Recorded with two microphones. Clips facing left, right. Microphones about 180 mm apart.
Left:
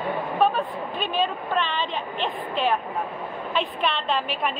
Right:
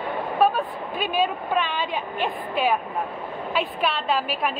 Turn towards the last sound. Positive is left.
turn(degrees=-5)  # may be behind; listen again after turning